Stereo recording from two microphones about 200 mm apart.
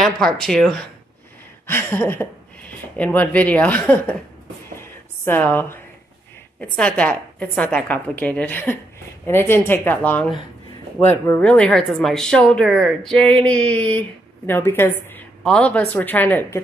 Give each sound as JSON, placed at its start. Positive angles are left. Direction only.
{"t": 0.0, "sound": "speech", "side_deg": 0}
{"t": 5.2, "sound": "speech", "side_deg": 10}